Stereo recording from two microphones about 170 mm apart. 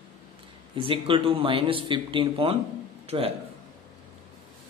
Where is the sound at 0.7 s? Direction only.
30° right (ahead or behind).